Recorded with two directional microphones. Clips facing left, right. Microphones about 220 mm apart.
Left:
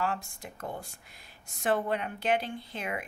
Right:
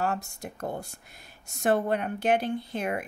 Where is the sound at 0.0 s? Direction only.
45° right (ahead or behind).